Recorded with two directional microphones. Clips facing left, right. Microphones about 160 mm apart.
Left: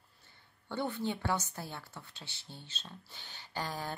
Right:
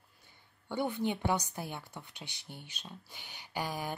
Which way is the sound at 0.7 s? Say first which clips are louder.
Right 2 dB; 15° right (ahead or behind).